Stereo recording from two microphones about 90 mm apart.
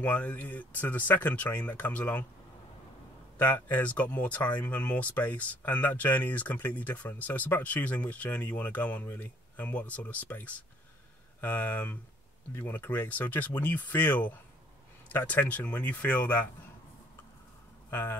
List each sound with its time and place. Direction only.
0.0 s speech: 15° left (ahead or behind)
3.3 s speech: 20° left (ahead or behind)
17.8 s speech: 25° left (ahead or behind)